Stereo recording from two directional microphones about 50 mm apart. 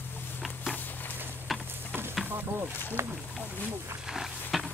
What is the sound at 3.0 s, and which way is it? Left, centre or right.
Speech, right.